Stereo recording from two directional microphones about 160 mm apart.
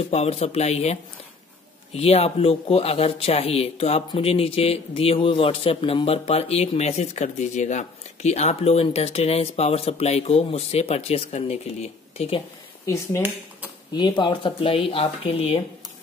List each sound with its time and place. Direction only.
0.1 s speech: 40° left (ahead or behind)
2.0 s speech: 40° left (ahead or behind)
12.8 s speech: 20° left (ahead or behind)
13.9 s speech: 30° left (ahead or behind)